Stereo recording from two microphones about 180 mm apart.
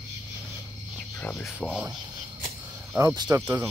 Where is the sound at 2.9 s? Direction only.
20° right (ahead or behind).